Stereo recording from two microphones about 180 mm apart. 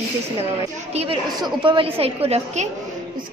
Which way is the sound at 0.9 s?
30° right (ahead or behind).